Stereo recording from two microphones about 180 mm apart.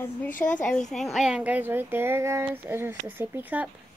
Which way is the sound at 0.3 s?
45° left (ahead or behind).